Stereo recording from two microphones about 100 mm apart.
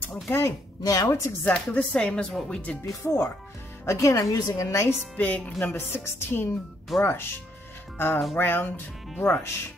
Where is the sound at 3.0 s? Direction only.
30° left (ahead or behind).